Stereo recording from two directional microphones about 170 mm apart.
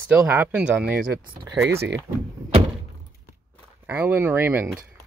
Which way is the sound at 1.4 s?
90° right.